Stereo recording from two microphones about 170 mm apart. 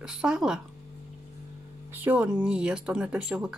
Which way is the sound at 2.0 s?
5° right (ahead or behind).